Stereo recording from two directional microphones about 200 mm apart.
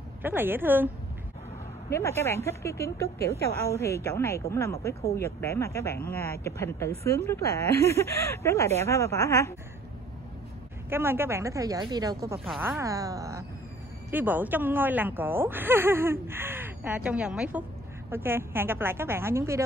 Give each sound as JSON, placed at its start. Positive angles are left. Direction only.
{"t": 0.2, "sound": "speech", "side_deg": -10}
{"t": 1.9, "sound": "speech", "side_deg": 15}
{"t": 10.9, "sound": "speech", "side_deg": -10}